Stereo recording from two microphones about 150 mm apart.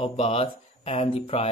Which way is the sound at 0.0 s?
40° left (ahead or behind).